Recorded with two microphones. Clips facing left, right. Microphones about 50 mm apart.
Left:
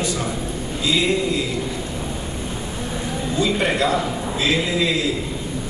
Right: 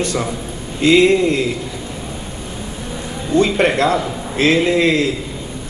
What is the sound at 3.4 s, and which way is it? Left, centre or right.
A man's voice, right.